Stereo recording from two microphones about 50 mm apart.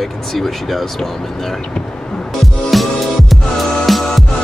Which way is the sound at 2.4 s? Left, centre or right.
Centre.